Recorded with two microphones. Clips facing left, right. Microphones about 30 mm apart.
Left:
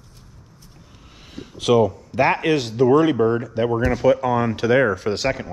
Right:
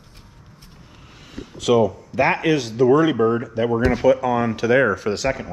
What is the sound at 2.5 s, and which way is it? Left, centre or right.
Speech, left.